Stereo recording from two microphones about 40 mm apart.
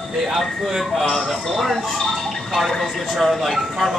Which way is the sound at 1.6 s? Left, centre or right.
Centre.